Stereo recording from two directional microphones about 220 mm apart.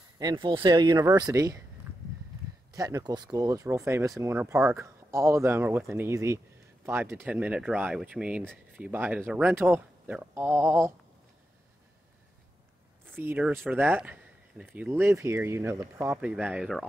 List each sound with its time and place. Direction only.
0.2 s speech: 20° right (ahead or behind)
2.7 s speech: 15° right (ahead or behind)
13.0 s speech: 10° right (ahead or behind)